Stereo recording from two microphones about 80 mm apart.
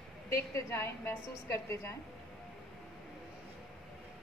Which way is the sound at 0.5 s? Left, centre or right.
Left.